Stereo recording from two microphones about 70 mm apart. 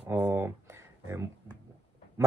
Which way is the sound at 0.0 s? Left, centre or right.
Right.